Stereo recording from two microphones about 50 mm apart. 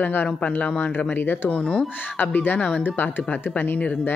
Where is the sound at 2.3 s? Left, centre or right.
Left.